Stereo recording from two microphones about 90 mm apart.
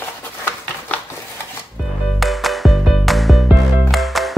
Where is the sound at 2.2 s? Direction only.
Centre (ahead or behind).